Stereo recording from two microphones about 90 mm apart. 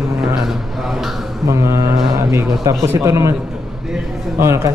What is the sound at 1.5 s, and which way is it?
A man's voice, 35° right (ahead or behind).